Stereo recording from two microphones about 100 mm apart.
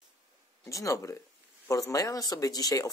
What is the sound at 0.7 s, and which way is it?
Speech, 30° left (ahead or behind).